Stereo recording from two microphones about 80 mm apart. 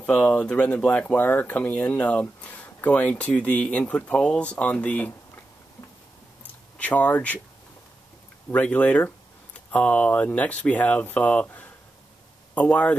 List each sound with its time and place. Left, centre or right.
0.0 s speech: centre
6.8 s speech: centre
8.5 s speech: centre